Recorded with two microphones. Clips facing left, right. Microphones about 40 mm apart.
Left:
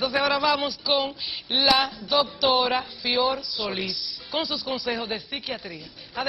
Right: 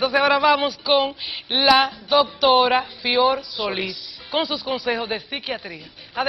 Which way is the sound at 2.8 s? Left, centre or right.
Right.